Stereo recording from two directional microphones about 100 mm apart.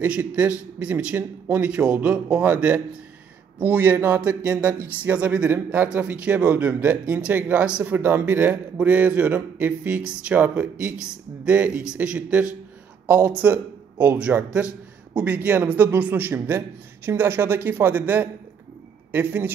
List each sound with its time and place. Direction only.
0.0 s a man's voice: 15° right (ahead or behind)